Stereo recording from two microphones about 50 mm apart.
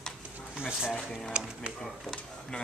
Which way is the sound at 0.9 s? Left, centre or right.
Centre.